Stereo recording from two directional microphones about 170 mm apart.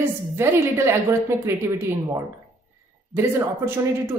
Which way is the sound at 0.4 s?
15° right (ahead or behind).